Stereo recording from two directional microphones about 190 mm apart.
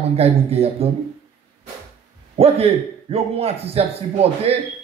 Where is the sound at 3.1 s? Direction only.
30° right (ahead or behind).